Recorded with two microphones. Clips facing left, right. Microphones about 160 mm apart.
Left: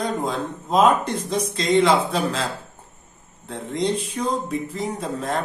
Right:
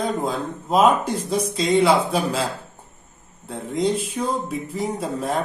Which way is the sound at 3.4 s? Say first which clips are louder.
Right 2 dB; 5° right (ahead or behind).